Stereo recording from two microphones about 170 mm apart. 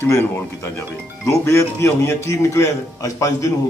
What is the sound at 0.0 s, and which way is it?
A man's voice, 15° left (ahead or behind).